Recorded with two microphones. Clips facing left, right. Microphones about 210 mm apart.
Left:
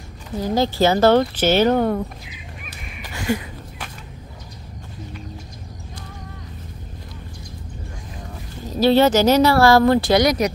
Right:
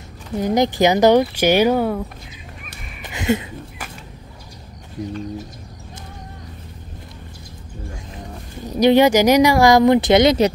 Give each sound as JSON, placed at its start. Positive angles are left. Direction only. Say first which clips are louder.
{"t": 0.4, "sound": "speech", "louder": "right 2 dB", "side_deg": -15}
{"t": 3.0, "sound": "a sound", "louder": "right 3 dB", "side_deg": -20}
{"t": 8.6, "sound": "speech", "louder": "right 2 dB", "side_deg": -15}